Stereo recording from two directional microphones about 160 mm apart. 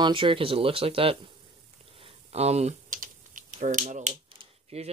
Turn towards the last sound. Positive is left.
turn(degrees=-40)  # may be behind; listen again after turning